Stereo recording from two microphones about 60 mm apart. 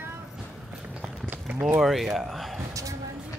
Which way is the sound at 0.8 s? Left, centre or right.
Centre.